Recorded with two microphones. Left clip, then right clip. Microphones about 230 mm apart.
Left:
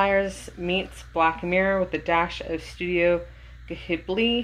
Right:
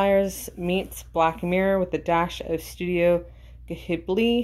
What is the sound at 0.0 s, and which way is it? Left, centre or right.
Speech, right.